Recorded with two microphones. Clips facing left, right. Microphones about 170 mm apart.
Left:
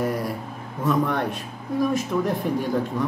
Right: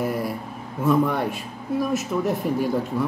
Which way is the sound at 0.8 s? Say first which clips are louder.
Right 2 dB; 10° right (ahead or behind).